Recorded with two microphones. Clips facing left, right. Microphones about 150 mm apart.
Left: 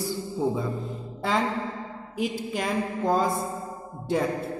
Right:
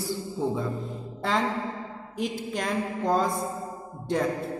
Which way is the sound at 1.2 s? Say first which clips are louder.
Left 1 dB; centre (ahead or behind).